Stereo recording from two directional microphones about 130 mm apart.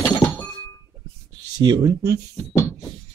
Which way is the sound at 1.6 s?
30° right (ahead or behind).